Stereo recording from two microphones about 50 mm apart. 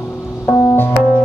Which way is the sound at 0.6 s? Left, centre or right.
Left.